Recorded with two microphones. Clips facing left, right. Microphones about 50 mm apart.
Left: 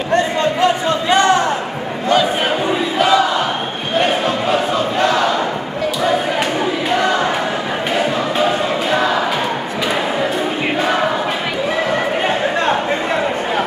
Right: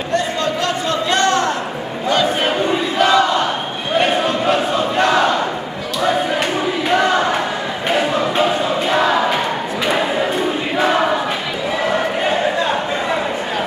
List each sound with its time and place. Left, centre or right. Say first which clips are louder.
0.1 s a sound: left 3 dB; left
3.0 s battle cry: even; centre
4.0 s crowd: even; centre